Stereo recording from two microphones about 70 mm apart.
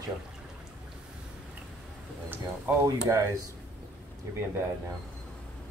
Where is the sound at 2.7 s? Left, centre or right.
Right.